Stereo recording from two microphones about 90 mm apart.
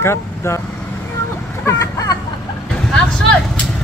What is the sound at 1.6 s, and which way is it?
Vehicle, 35° left (ahead or behind).